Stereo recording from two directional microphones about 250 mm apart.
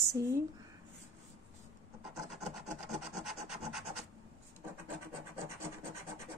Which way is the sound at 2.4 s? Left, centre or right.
Right.